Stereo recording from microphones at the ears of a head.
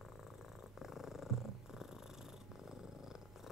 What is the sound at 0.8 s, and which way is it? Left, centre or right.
Purr, left.